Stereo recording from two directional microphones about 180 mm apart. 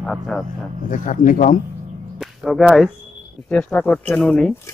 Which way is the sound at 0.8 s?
45° left (ahead or behind).